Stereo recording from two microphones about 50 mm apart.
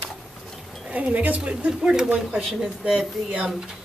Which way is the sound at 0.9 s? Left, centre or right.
Right.